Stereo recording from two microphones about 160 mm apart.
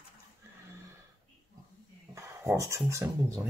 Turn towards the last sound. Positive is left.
turn(degrees=-20)  # may be behind; listen again after turning